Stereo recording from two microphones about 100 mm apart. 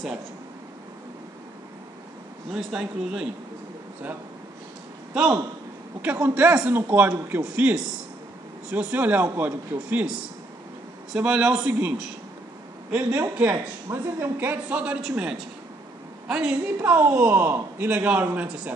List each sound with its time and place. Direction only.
2.5 s a man's voice: 5° right (ahead or behind)
5.1 s a man's voice: 15° right (ahead or behind)
12.9 s a man's voice: 20° right (ahead or behind)